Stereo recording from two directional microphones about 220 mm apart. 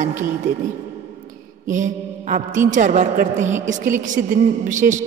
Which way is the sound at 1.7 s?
35° right (ahead or behind).